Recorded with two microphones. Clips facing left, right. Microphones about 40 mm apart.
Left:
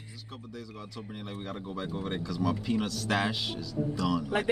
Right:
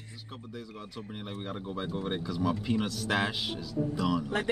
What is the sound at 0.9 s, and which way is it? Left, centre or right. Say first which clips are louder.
Speech: even; centre.